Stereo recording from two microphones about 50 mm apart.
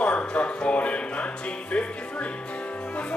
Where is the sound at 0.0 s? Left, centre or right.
Left.